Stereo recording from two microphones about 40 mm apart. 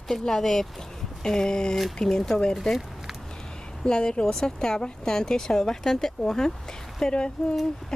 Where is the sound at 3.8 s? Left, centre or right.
Left.